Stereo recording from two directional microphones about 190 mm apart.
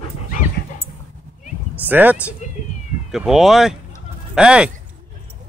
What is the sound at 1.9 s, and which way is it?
Speech, 10° right (ahead or behind).